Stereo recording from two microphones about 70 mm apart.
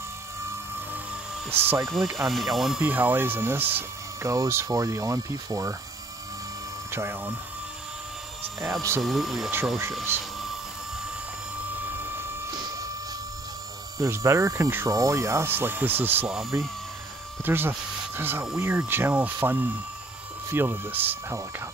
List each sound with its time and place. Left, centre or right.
1.5 s speech: right
2.1 s speech: centre
2.8 s speech: right
4.2 s speech: right
6.9 s speech: right
9.0 s speech: centre
10.1 s speech: right
12.0 s a sound: right
13.9 s speech: right
15.4 s speech: right
16.5 s speech: right
21.3 s speech: right